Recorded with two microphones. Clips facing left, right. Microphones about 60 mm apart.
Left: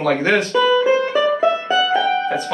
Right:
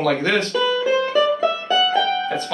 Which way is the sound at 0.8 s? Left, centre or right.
Left.